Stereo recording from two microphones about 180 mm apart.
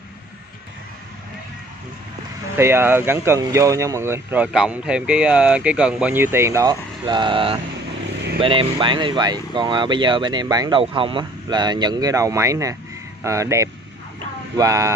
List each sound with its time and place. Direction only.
2.5 s speech: 15° right (ahead or behind)